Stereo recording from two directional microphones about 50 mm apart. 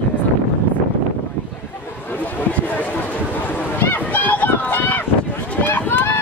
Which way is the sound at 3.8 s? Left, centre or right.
Left.